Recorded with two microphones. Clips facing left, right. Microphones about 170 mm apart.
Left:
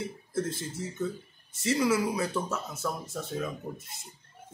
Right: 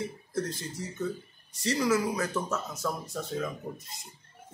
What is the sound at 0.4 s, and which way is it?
Speech, 25° left (ahead or behind).